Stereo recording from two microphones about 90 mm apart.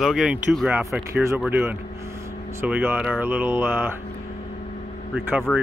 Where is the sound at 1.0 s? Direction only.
30° right (ahead or behind).